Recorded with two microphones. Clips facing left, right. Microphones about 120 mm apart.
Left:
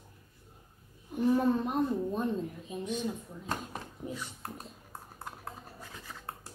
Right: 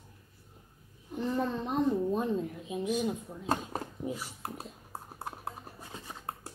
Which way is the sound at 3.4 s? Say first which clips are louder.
Right 6 dB; 40° right (ahead or behind).